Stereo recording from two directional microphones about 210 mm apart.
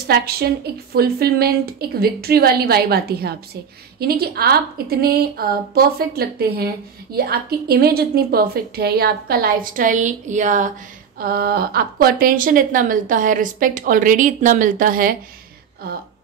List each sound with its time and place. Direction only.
0.0 s a woman's voice: 50° right (ahead or behind)